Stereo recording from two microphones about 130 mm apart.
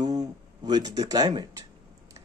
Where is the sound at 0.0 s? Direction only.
30° right (ahead or behind).